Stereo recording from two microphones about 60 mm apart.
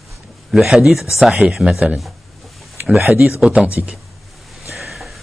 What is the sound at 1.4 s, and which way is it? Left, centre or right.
Speech, right.